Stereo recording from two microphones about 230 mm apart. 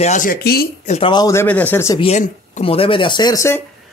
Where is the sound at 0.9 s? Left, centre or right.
Left.